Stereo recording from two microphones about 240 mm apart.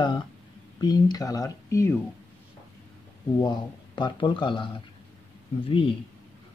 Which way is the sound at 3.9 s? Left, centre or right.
Centre.